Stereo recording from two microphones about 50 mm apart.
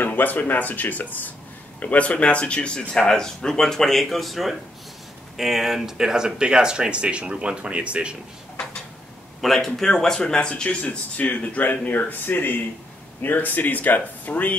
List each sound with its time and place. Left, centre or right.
0.0 s speech: left; by 8.2 s right
9.4 s speech: centre
10.8 s speech: left